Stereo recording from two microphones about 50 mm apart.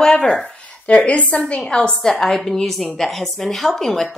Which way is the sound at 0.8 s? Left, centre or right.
Left.